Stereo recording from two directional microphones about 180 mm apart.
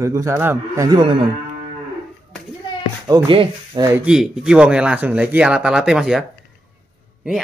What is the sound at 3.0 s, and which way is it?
Speech, 20° right (ahead or behind).